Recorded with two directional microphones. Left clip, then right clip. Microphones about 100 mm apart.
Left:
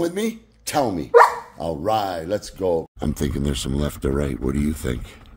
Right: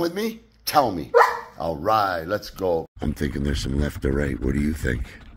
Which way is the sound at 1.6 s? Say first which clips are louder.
Right 1 dB; 55° left (ahead or behind).